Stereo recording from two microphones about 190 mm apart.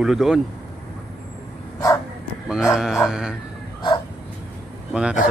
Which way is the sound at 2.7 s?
Centre (ahead or behind).